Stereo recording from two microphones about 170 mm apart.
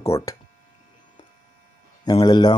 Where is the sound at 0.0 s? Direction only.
20° left (ahead or behind).